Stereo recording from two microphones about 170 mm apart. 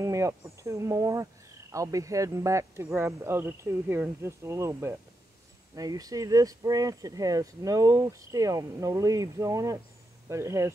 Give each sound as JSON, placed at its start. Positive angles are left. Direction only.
{"t": 0.0, "sound": "speech", "side_deg": -15}